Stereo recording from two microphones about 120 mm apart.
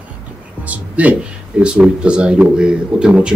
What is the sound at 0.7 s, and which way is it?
Speech, 10° right (ahead or behind).